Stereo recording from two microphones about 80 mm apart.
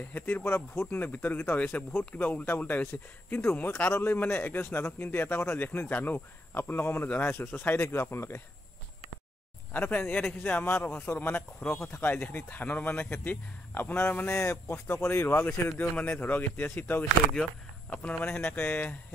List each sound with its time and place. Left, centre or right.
0.1 s a man's voice: left
9.7 s a man's voice: left
18.2 s a man's voice: left